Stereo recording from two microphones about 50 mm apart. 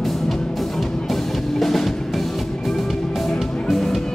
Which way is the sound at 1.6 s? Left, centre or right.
Centre.